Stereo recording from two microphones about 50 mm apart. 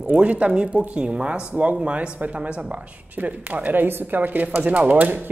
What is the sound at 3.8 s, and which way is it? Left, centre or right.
Speech, right.